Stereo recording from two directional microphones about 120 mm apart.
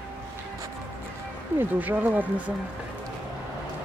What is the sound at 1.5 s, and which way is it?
Speech, 15° right (ahead or behind).